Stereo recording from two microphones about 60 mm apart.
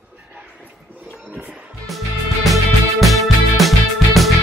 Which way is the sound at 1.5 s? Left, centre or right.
Centre.